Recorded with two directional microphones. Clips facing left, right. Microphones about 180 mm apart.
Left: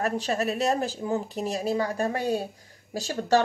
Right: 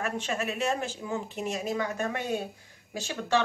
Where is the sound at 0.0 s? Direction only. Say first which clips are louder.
Left 5 dB; 35° left (ahead or behind).